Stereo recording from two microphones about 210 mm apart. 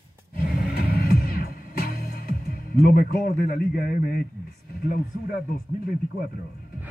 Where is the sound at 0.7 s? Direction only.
45° left (ahead or behind).